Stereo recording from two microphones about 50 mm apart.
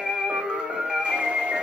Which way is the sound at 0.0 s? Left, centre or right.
Centre.